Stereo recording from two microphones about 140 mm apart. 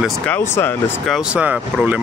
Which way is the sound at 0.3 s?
15° left (ahead or behind).